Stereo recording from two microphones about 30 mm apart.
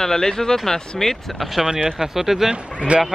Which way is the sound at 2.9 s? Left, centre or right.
Right.